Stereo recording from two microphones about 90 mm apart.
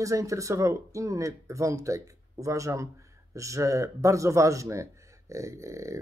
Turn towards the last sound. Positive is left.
turn(degrees=-35)  # may be behind; listen again after turning